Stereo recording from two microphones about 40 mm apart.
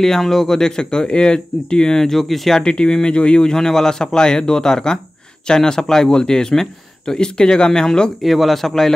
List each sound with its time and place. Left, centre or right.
0.0 s speech: centre
2.6 s speech: left
8.2 s speech: centre